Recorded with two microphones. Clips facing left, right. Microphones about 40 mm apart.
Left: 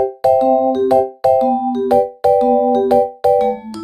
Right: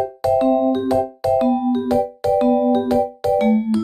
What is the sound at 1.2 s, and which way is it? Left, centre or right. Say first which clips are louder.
Music: left 4 dB; centre.